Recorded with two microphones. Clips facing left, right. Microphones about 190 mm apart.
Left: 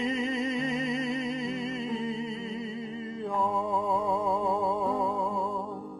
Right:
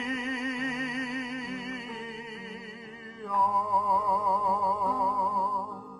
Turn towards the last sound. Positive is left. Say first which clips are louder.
# left 2 dB
turn(degrees=25)  # may be behind; listen again after turning